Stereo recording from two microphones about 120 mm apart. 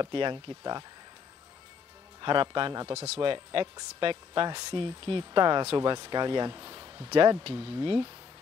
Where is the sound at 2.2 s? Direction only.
40° right (ahead or behind).